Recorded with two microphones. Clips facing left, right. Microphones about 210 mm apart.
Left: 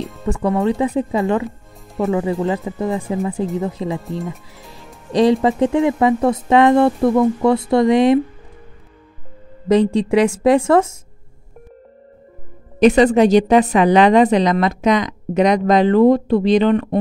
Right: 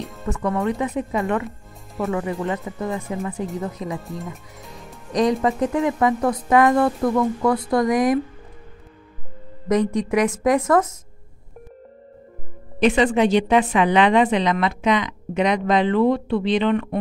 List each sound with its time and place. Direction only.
0.0 s music: centre (ahead or behind)
0.3 s a woman's voice: 30° left (ahead or behind)
4.0 s speech: centre (ahead or behind)
4.7 s speech: 30° left (ahead or behind)
9.7 s speech: 30° left (ahead or behind)
12.7 s a woman's voice: 40° left (ahead or behind)